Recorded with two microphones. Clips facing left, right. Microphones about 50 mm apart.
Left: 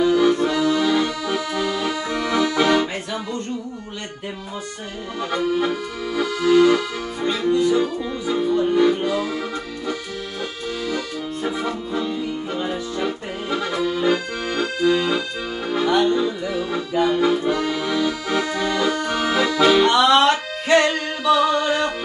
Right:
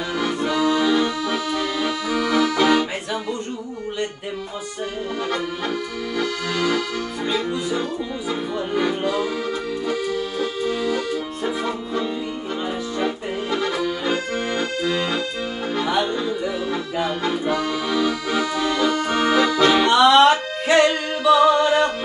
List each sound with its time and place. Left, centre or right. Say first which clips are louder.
0.0 s accordion: left 7 dB; centre
5.2 s accordion: left 7 dB; centre
7.2 s music: left 6 dB; centre
8.5 s accordion: left 5 dB; centre
11.6 s music: even; centre
13.5 s accordion: left 1 dB; centre
20.2 s music: right 3 dB; centre